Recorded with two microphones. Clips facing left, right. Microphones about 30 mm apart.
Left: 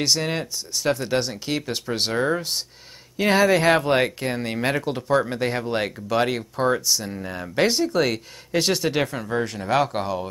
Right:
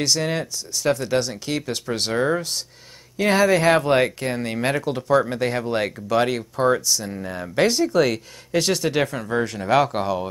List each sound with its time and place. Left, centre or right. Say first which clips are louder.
0.0 s speech: right 1 dB; centre